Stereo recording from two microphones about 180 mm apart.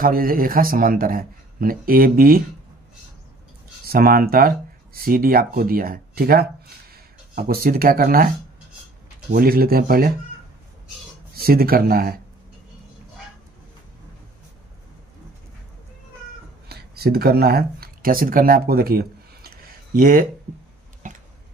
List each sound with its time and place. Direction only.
0.0 s a man's voice: 55° right (ahead or behind)
3.8 s speech: 55° right (ahead or behind)
9.3 s a man's voice: 55° right (ahead or behind)
11.3 s speech: 55° right (ahead or behind)
16.6 s a sound: 60° right (ahead or behind)